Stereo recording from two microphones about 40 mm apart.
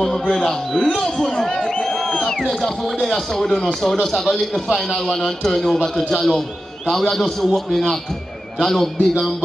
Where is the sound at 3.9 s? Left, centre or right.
Centre.